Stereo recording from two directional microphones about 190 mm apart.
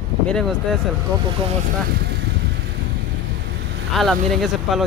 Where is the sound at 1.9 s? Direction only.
55° right (ahead or behind).